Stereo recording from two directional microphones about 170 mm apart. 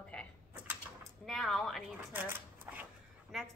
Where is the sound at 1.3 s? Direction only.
Centre (ahead or behind).